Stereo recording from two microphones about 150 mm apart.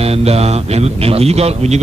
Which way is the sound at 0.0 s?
45° right (ahead or behind).